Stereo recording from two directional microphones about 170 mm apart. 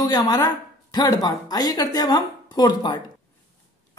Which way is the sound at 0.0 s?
20° left (ahead or behind).